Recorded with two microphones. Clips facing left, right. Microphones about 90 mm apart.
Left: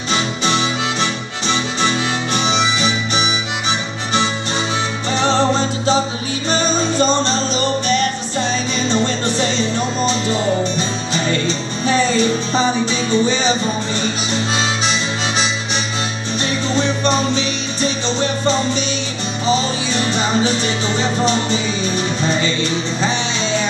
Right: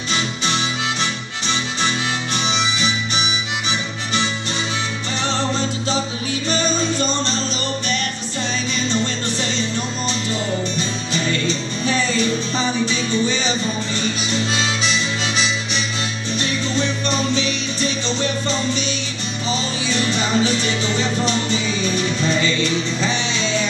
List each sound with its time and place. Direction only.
0.4 s harmonica: 75° left (ahead or behind)
2.3 s harmonica: 80° left
5.1 s music: 25° left (ahead or behind)